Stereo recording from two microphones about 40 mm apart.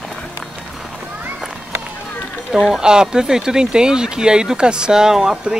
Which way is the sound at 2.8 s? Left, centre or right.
Centre.